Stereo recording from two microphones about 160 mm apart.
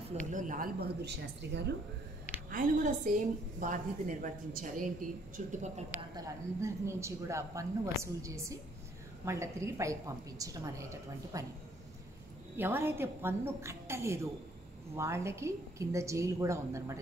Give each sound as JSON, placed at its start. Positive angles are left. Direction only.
{"t": 0.1, "sound": "a woman's voice", "side_deg": -50}
{"t": 2.5, "sound": "a woman's voice", "side_deg": -55}
{"t": 5.9, "sound": "a woman's voice", "side_deg": -25}
{"t": 12.5, "sound": "a woman's voice", "side_deg": -15}